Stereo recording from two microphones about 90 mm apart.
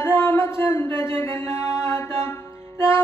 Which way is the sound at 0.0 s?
25° left (ahead or behind).